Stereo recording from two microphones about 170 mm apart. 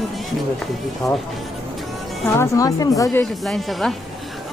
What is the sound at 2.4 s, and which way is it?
Speech, 20° left (ahead or behind).